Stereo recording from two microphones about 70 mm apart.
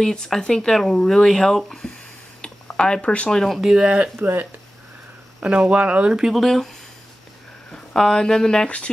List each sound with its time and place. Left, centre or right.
0.0 s speech: centre
3.5 s speech: centre
4.2 s speech: right
5.4 s speech: centre
6.4 s speech: centre
7.7 s speech: centre